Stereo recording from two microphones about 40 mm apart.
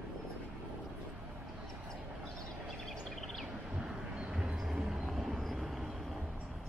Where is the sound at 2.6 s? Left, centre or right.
Centre.